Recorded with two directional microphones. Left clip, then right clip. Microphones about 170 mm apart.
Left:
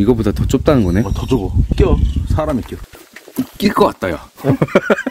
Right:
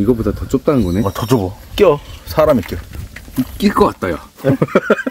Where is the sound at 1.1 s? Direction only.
40° right (ahead or behind).